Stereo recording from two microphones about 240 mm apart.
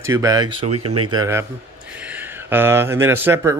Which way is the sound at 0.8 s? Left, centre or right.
Right.